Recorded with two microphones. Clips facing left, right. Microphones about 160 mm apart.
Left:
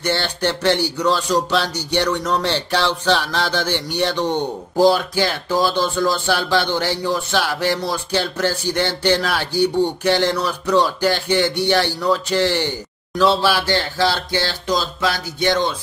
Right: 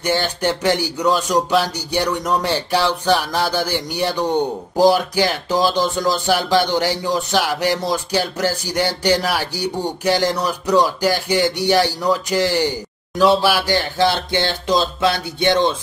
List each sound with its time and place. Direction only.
0.0 s speech: 15° right (ahead or behind)